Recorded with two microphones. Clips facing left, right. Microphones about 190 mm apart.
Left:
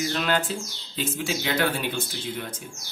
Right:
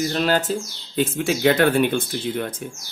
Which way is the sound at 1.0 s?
55° right (ahead or behind).